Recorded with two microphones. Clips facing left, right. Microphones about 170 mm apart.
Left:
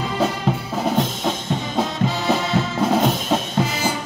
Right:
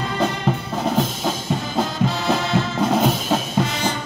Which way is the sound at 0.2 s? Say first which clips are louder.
Even; centre (ahead or behind).